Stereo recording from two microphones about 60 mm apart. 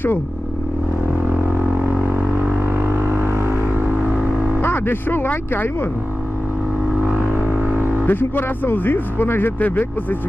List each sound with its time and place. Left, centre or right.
1.9 s music: right
3.1 s vehicle: right
4.6 s speech: left
7.7 s a sound: right
8.1 s speech: left